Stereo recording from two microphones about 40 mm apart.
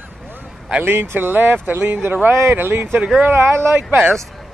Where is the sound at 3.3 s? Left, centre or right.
Right.